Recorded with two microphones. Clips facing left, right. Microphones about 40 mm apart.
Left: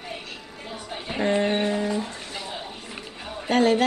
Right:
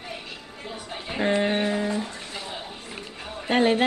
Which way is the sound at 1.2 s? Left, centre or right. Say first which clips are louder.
Even; centre.